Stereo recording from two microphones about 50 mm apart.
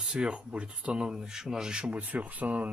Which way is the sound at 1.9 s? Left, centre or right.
Right.